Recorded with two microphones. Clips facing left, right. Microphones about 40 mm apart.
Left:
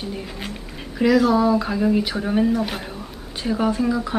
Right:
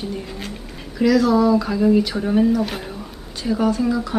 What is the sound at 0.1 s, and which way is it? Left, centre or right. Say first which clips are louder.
Speech: right 1 dB; centre.